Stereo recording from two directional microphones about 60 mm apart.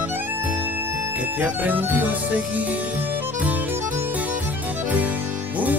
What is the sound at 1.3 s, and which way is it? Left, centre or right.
Music, right.